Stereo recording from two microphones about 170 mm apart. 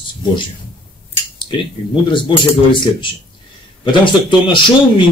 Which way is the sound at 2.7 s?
30° left (ahead or behind).